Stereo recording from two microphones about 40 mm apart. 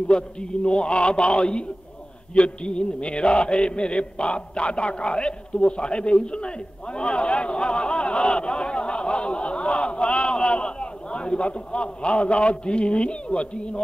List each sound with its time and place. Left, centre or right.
0.1 s a man's voice: left